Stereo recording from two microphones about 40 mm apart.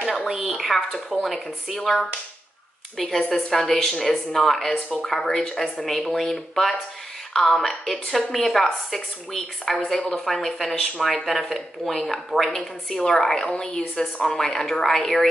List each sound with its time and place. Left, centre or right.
0.5 s speech: centre
3.0 s a woman's voice: centre
9.9 s speech: left
10.2 s a woman's voice: centre